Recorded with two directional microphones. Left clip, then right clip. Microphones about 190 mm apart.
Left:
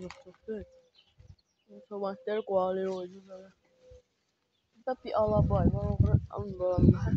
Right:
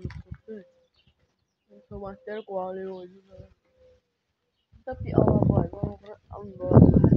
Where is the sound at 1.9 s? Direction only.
5° left (ahead or behind).